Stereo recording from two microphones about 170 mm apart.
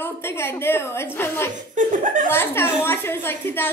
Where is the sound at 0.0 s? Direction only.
15° left (ahead or behind).